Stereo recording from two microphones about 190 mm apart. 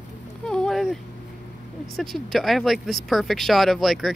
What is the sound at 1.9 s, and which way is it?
Speech, centre (ahead or behind).